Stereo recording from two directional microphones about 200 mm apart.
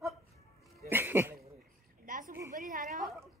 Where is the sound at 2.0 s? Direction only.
40° right (ahead or behind).